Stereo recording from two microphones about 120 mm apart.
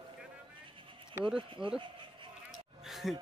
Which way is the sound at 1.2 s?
45° right (ahead or behind).